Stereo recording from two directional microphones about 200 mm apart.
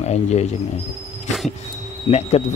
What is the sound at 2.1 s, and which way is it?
Speech, 25° left (ahead or behind).